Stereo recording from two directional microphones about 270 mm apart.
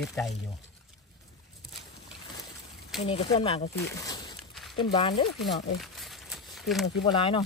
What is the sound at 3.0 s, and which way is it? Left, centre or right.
Speech, left.